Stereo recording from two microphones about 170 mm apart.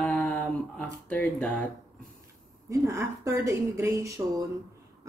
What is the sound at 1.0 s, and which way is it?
Speech, 5° left (ahead or behind).